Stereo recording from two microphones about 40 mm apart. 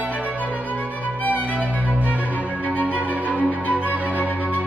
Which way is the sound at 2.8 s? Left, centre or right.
Right.